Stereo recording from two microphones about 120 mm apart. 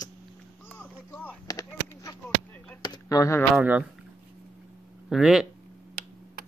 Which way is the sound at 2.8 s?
30° left (ahead or behind).